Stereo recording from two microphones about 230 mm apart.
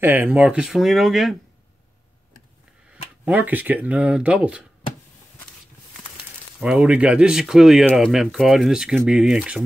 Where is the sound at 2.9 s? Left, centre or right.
Centre.